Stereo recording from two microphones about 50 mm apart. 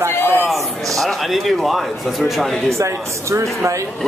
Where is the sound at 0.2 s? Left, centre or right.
Left.